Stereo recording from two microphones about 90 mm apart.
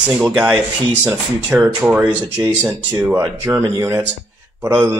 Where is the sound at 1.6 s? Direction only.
20° right (ahead or behind).